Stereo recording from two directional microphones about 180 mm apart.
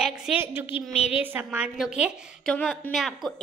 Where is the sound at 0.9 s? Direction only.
35° left (ahead or behind).